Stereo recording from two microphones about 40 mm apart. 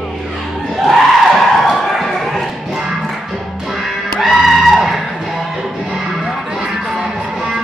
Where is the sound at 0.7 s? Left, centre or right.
Centre.